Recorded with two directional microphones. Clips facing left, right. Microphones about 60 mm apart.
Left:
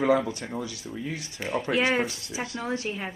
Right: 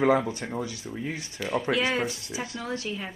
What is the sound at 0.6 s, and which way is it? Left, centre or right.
Speech, right.